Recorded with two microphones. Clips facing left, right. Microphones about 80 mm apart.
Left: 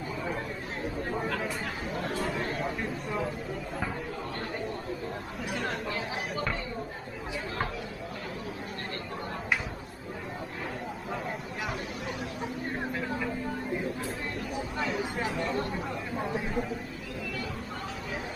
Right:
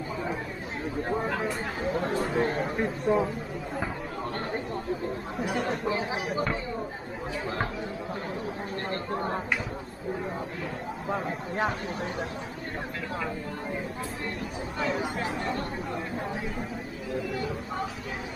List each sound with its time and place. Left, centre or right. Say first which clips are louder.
1.1 s speech: right 4 dB; right
2.3 s speech: right 5 dB; right
5.7 s speech: right 5 dB; right